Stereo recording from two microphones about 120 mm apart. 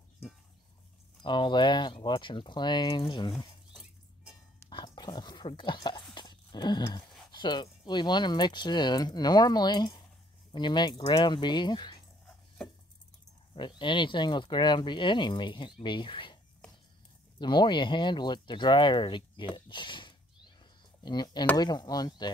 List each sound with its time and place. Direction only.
1.2 s speech: 40° left (ahead or behind)
4.6 s a sound: 35° left (ahead or behind)
7.8 s speech: 40° left (ahead or behind)
13.6 s speech: 40° left (ahead or behind)
17.4 s speech: 40° left (ahead or behind)